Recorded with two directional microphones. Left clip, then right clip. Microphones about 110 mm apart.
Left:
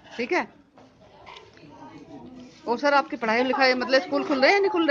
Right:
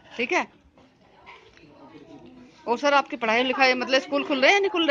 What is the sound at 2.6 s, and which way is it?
A man's voice, 15° right (ahead or behind).